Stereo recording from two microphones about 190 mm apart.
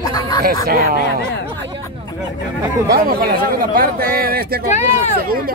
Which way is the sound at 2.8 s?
50° right (ahead or behind).